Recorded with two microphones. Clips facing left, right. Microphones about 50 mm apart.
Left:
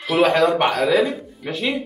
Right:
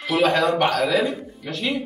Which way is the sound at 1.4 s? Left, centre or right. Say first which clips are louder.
Left 3 dB; centre.